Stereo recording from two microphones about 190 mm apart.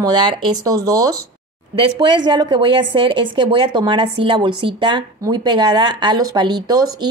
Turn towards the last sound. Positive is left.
turn(degrees=-20)  # may be behind; listen again after turning